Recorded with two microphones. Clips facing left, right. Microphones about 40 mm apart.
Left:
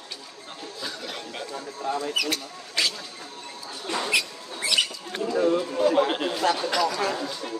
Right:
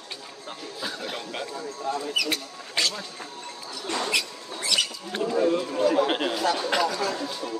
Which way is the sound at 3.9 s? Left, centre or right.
Centre.